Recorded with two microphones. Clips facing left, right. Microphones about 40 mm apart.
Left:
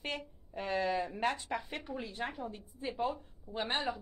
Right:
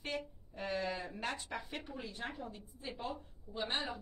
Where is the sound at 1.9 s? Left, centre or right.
Left.